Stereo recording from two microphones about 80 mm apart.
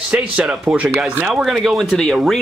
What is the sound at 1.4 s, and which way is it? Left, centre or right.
Speech, centre.